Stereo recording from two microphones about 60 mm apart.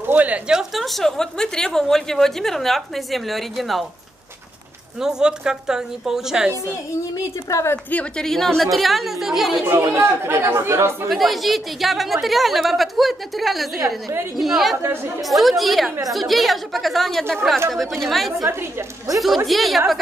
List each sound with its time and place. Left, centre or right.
0.0 s a woman's voice: right
0.5 s a woman's voice: centre
5.0 s a woman's voice: centre
7.5 s a woman's voice: left
8.2 s a woman's voice: centre
9.7 s speech: right
11.1 s a woman's voice: centre